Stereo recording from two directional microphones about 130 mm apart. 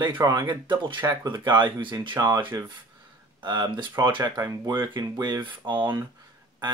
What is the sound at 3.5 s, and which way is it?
Speech, 35° right (ahead or behind).